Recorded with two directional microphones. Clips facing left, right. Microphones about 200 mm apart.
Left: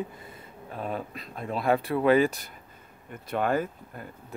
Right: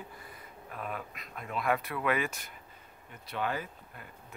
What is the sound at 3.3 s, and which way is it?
Speech, 50° left (ahead or behind).